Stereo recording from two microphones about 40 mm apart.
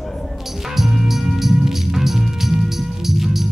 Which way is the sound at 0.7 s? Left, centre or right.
Centre.